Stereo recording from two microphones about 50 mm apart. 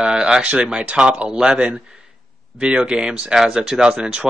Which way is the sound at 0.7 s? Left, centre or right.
Centre.